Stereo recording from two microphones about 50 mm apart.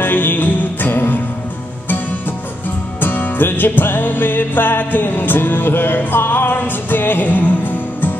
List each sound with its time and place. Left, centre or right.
0.0 s music: left
3.0 s music: left